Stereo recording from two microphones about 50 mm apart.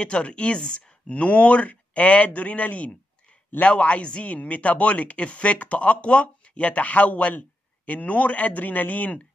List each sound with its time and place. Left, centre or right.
0.0 s speech: left